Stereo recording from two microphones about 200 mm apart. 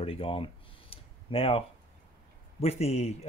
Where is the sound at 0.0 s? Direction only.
30° left (ahead or behind).